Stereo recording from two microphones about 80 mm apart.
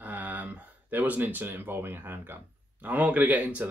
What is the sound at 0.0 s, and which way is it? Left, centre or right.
Speech, right.